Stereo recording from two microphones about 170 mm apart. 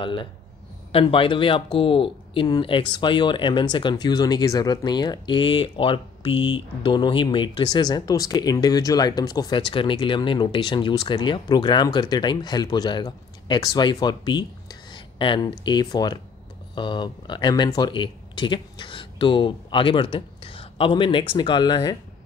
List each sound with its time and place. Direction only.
0.0 s speech: 30° left (ahead or behind)